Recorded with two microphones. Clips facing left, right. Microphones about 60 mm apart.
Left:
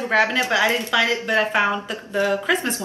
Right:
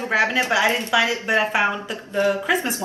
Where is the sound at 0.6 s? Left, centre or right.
Right.